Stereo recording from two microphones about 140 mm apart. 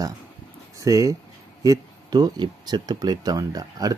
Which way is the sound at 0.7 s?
25° right (ahead or behind).